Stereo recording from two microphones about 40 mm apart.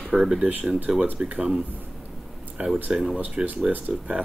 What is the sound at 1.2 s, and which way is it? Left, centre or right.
Speech, right.